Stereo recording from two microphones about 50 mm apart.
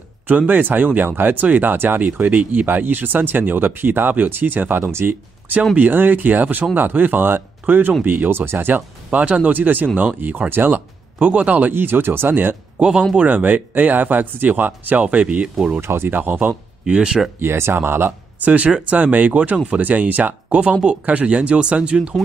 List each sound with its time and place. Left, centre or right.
0.3 s speech: right
5.8 s speech: right
11.1 s speech: right
11.7 s speech: right
13.2 s speech: right
15.8 s speech: right
16.8 s speech: centre
17.4 s speech: right
18.4 s speech: right